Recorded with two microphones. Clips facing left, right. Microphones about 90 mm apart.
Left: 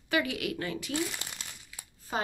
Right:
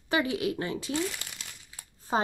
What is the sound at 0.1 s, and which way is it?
Speech, 25° right (ahead or behind).